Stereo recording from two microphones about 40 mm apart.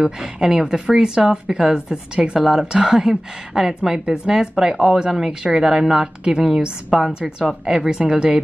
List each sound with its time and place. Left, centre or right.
0.2 s a woman's voice: centre
7.2 s a woman's voice: centre